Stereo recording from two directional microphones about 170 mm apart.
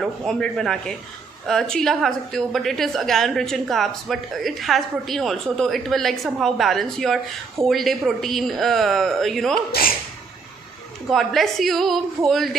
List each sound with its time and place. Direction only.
0.0 s a woman's voice: centre (ahead or behind)
9.7 s speech: 60° left (ahead or behind)
11.1 s a woman's voice: centre (ahead or behind)